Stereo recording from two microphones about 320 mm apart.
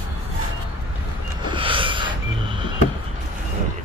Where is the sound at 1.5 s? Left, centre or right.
Centre.